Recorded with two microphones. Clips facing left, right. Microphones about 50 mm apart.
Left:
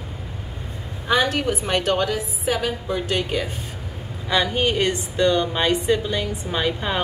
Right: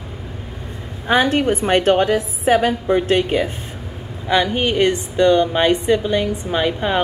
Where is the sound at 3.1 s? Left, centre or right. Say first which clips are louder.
Right 6 dB; right.